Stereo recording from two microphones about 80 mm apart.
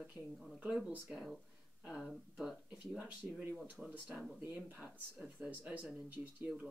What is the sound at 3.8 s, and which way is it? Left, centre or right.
Speech, centre.